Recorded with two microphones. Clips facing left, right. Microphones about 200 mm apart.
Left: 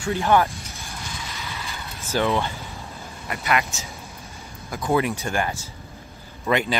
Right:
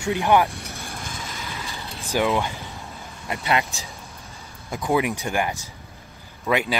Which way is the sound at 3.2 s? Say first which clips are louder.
Right 1 dB; 25° right (ahead or behind).